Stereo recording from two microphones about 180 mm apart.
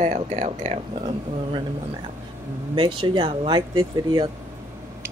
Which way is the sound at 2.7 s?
30° right (ahead or behind).